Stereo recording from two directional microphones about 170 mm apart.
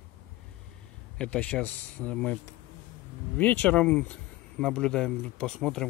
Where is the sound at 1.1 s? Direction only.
5° left (ahead or behind).